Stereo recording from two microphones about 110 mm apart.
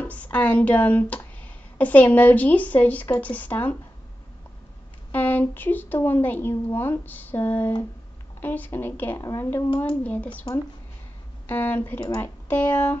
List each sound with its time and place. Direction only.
0.0 s speech: 15° left (ahead or behind)
5.1 s speech: 15° left (ahead or behind)
11.4 s speech: 20° left (ahead or behind)